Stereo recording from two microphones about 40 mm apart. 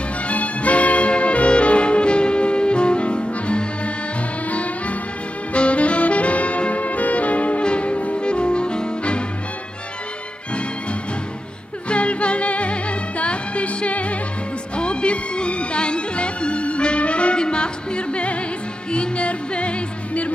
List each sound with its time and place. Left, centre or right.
0.3 s music: left
11.9 s music: left